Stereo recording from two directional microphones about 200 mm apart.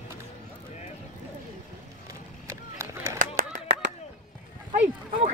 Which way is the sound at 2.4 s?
15° right (ahead or behind).